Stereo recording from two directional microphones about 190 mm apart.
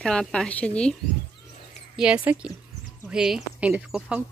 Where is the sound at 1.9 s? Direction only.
5° right (ahead or behind).